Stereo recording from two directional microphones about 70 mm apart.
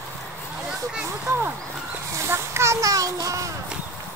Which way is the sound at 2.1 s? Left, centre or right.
Right.